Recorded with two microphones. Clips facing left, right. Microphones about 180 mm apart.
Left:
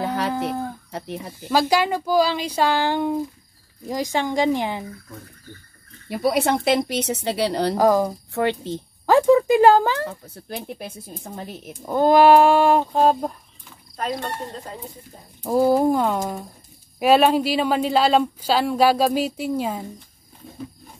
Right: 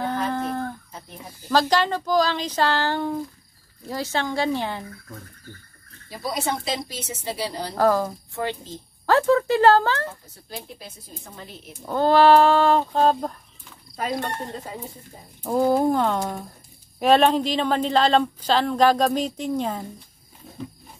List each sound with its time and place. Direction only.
0.0 s a sound: 80° left
0.3 s a sound: 10° left (ahead or behind)
0.9 s speech: 75° left (ahead or behind)
1.5 s speech: 10° left (ahead or behind)
6.0 s speech: 65° left (ahead or behind)
7.7 s speech: 15° left (ahead or behind)
8.4 s speech: 65° left (ahead or behind)
9.0 s speech: 15° left (ahead or behind)
10.5 s speech: 60° left (ahead or behind)
11.3 s speech: 50° left (ahead or behind)
11.8 s speech: 15° left (ahead or behind)
13.9 s speech: 5° right (ahead or behind)
15.4 s speech: 10° left (ahead or behind)